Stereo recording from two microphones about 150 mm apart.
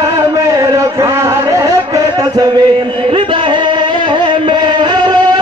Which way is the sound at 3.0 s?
35° right (ahead or behind).